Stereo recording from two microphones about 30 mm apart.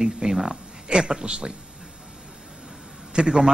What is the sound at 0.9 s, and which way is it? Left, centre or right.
Speech, right.